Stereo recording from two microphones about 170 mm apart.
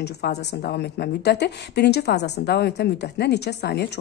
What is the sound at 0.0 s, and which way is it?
A woman's voice, 80° left.